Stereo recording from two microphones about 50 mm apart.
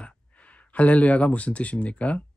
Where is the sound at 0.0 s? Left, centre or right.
Left.